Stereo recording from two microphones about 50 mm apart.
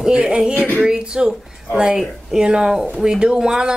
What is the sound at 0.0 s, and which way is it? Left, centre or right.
Speech, centre.